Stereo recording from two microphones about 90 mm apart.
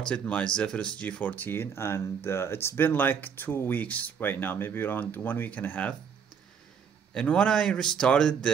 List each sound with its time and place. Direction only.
0.0 s speech: 15° left (ahead or behind)
7.2 s speech: 10° left (ahead or behind)